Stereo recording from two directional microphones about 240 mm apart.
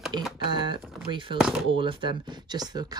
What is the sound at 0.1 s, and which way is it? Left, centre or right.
Typing, centre.